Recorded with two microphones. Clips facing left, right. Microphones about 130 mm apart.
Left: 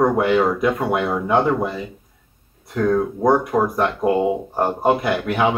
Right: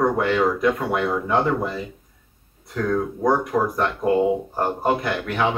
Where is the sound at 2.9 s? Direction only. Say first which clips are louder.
Left 3 dB; 25° left (ahead or behind).